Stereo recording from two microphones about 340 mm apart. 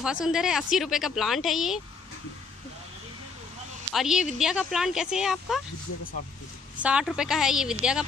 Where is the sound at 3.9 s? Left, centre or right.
Centre.